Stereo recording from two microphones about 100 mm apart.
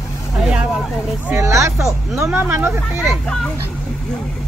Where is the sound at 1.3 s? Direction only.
30° right (ahead or behind).